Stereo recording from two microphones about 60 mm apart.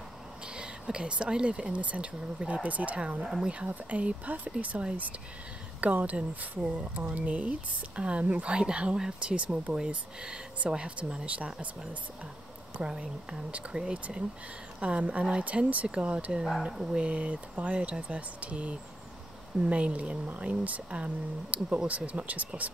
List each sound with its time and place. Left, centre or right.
0.5 s speech: centre
12.7 s speech: centre